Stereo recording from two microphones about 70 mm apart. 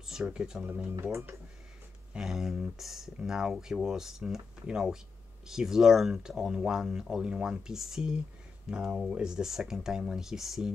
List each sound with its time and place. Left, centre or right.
0.0 s speech: centre
1.0 s speech: right
2.1 s speech: centre